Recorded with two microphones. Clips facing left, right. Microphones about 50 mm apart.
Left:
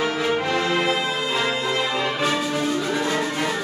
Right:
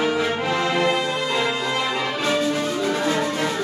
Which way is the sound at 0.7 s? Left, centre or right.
Centre.